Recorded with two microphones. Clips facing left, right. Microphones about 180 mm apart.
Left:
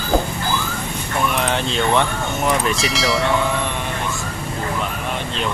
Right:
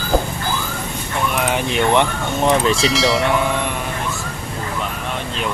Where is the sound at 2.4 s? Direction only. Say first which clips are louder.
Right 4 dB; 30° right (ahead or behind).